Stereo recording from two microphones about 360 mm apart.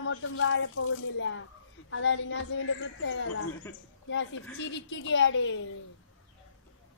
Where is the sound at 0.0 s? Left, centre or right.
Left.